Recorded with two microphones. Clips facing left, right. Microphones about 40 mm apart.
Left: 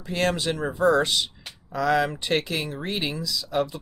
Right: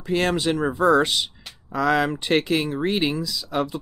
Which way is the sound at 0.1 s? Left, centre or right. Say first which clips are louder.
Right 3 dB; right.